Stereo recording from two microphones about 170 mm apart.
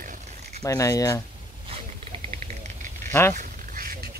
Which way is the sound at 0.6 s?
20° left (ahead or behind).